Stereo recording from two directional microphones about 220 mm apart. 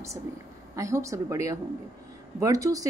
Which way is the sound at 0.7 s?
15° right (ahead or behind).